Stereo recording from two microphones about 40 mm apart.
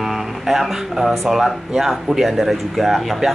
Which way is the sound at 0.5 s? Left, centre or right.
Centre.